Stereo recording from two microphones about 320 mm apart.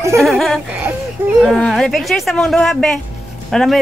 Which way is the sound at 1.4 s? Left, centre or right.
Centre.